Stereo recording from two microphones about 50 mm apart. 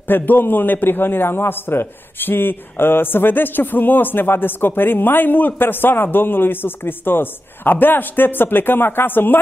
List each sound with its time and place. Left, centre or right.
0.1 s a man's voice: left